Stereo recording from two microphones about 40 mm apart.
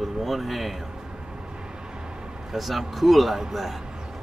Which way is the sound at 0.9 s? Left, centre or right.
Right.